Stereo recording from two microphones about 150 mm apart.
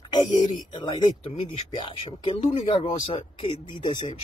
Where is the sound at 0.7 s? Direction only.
35° left (ahead or behind).